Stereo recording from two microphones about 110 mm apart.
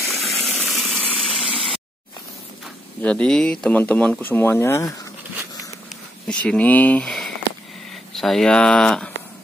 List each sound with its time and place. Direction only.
0.1 s water: centre (ahead or behind)
0.6 s pump: 5° left (ahead or behind)
3.0 s speech: 10° left (ahead or behind); by 4.9 s 25° left (ahead or behind)
6.2 s speech: 10° left (ahead or behind)